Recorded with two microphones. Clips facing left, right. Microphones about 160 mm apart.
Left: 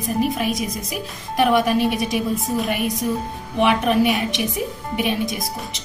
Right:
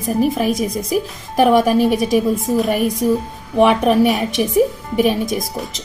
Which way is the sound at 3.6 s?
40° right (ahead or behind).